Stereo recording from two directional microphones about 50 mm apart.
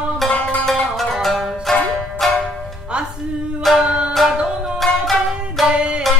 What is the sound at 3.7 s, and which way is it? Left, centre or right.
Music, centre.